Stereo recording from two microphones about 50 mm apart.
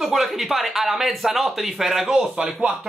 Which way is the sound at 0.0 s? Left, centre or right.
Centre.